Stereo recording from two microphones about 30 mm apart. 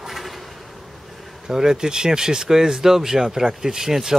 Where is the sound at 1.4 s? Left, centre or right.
Right.